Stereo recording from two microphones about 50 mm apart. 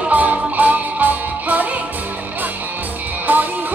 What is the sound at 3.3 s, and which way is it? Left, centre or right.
Music, right.